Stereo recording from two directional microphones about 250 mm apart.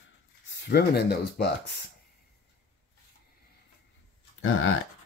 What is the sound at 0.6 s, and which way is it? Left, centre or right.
Speech, left.